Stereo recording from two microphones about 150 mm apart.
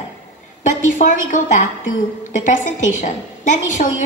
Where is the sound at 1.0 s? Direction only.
50° left (ahead or behind).